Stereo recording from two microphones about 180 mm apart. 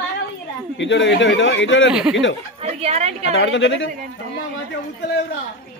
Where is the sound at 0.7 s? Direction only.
85° left.